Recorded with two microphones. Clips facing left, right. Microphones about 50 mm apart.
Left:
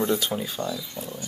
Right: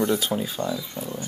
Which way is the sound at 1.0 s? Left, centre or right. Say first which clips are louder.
Right 3 dB; right.